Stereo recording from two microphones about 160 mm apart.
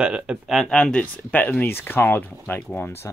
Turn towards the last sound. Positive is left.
turn(degrees=15)  # may be behind; listen again after turning